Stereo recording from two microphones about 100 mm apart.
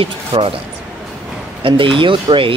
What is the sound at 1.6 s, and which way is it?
Speech, 60° right (ahead or behind).